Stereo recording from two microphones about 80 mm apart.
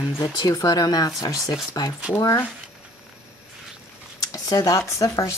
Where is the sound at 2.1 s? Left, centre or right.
Left.